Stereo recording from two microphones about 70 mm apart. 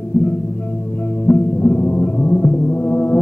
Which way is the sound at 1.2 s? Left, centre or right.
Left.